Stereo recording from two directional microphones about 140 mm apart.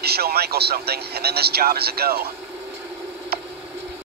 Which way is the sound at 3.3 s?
90° right.